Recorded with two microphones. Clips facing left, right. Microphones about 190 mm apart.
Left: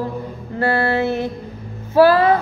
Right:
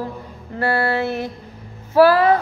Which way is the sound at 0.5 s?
25° left (ahead or behind).